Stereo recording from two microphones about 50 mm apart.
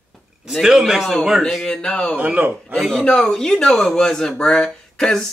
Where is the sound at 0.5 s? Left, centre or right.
Centre.